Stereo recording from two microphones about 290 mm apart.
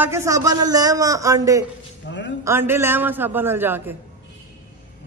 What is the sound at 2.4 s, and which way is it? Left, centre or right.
A man's voice, centre.